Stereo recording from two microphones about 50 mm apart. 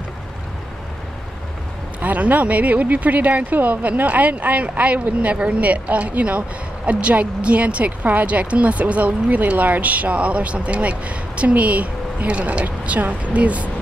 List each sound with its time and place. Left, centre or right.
2.0 s speech: right